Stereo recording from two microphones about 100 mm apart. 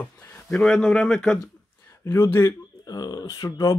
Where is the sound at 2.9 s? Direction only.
40° left (ahead or behind).